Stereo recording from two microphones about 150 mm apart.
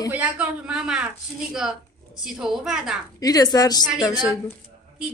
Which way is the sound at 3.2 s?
25° left (ahead or behind).